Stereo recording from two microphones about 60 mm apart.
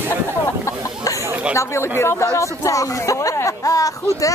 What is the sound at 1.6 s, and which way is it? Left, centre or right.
Speech, left.